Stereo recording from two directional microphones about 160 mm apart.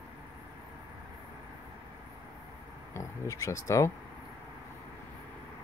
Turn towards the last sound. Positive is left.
turn(degrees=20)  # may be behind; listen again after turning